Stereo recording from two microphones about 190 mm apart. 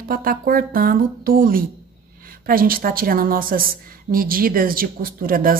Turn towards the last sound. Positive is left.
turn(degrees=-50)  # may be behind; listen again after turning